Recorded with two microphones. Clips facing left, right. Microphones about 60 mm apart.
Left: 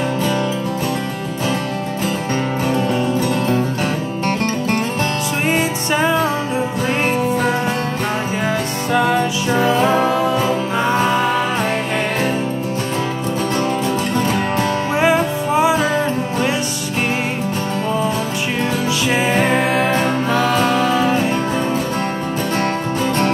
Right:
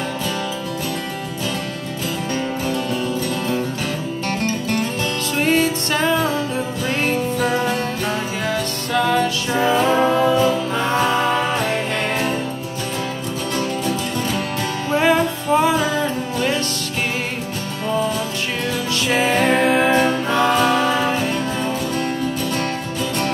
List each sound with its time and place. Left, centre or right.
5.4 s music: centre
8.5 s music: centre
9.9 s music: centre
10.3 s music: left
10.8 s music: centre
15.0 s music: centre
19.0 s music: centre